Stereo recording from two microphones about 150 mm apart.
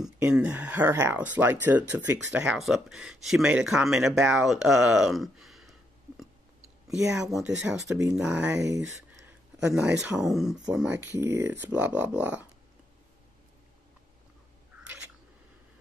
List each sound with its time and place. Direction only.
0.2 s speech: 10° right (ahead or behind)
9.7 s speech: 20° right (ahead or behind)
10.1 s speech: centre (ahead or behind)
14.8 s a sound: 10° right (ahead or behind)